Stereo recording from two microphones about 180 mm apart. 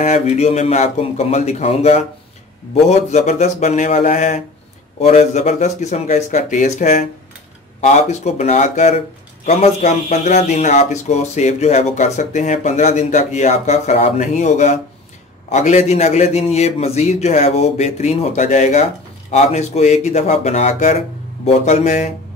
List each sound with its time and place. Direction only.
0.0 s speech: 40° left (ahead or behind)